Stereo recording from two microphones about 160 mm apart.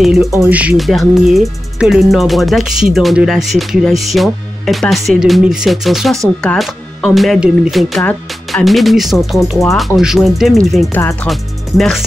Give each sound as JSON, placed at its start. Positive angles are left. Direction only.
{"t": 0.0, "sound": "speech", "side_deg": 0}
{"t": 0.3, "sound": "speech", "side_deg": -20}
{"t": 0.6, "sound": "speech", "side_deg": -5}